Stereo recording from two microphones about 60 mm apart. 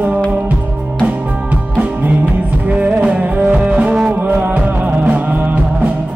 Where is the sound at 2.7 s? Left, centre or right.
Right.